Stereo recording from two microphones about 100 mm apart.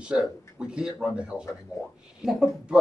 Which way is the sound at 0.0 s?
10° right (ahead or behind).